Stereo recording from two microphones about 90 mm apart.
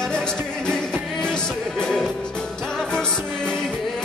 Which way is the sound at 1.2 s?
10° left (ahead or behind).